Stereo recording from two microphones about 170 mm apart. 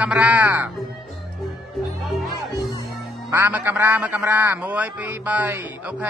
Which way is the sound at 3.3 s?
10° right (ahead or behind).